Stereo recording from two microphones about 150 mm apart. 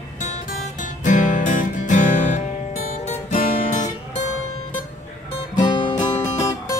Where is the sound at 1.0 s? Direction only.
60° left (ahead or behind).